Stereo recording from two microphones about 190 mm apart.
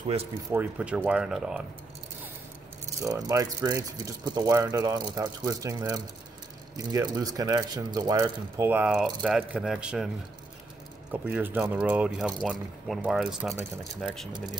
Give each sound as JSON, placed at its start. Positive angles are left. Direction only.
{"t": 0.5, "sound": "speech", "side_deg": -10}
{"t": 3.0, "sound": "speech", "side_deg": -20}